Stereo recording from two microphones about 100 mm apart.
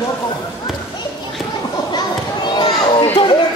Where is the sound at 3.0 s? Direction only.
75° left (ahead or behind).